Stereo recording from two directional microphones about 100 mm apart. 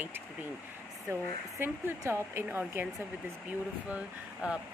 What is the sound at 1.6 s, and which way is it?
Speech, 25° right (ahead or behind).